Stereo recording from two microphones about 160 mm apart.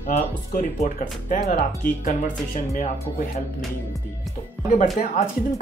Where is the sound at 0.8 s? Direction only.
55° left (ahead or behind).